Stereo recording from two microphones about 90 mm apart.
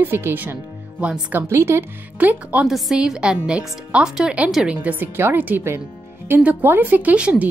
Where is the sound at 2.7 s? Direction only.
5° right (ahead or behind).